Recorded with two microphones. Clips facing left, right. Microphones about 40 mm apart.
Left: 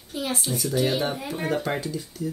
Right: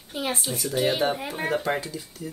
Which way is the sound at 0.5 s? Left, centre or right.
Centre.